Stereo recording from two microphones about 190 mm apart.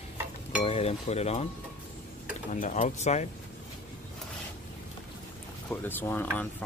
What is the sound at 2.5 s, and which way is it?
Speech, 40° left (ahead or behind).